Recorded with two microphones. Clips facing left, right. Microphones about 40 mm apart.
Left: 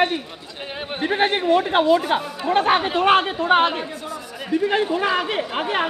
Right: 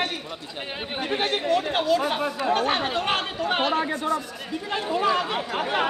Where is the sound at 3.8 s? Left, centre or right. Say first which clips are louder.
Right 5 dB; centre.